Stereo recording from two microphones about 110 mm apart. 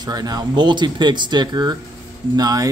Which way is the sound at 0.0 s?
35° right (ahead or behind).